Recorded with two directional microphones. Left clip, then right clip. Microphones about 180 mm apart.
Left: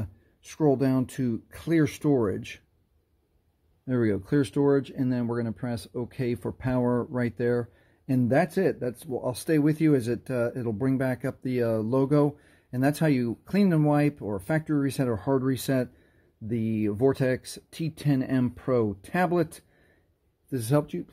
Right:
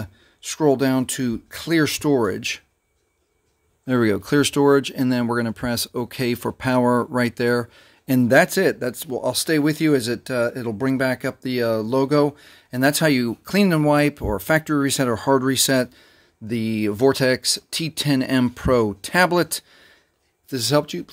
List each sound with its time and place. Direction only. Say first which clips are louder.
0.0 s speech: right 9 dB; 10° right (ahead or behind)
3.8 s speech: right 7 dB; 25° right (ahead or behind)